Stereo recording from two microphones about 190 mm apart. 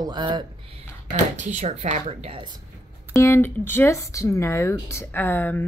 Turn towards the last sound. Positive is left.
turn(degrees=10)  # may be behind; listen again after turning